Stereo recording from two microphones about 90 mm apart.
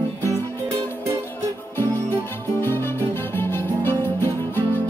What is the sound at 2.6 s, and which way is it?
Music, 25° left (ahead or behind).